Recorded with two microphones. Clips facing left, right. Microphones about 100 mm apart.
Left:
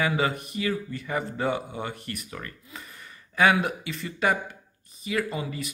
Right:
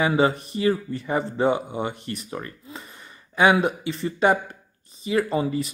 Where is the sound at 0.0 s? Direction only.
30° right (ahead or behind).